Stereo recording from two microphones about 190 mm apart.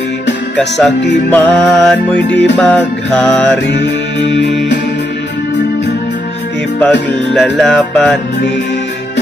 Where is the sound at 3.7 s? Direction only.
65° left (ahead or behind).